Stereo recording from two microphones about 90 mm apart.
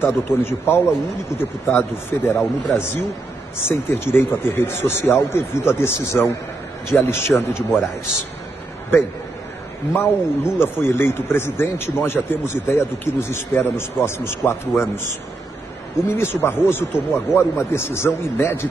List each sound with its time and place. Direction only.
0.0 s speech: 25° left (ahead or behind)
9.9 s speech: 25° left (ahead or behind)
16.1 s speech: 25° left (ahead or behind)